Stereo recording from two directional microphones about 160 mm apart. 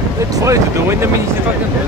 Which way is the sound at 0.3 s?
15° right (ahead or behind).